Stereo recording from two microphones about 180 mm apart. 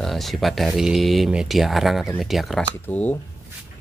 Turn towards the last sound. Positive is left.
turn(degrees=10)  # may be behind; listen again after turning